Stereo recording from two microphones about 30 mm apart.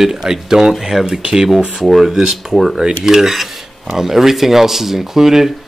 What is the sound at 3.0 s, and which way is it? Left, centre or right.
Speech, centre.